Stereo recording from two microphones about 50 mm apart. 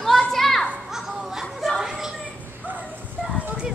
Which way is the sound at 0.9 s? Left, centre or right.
Centre.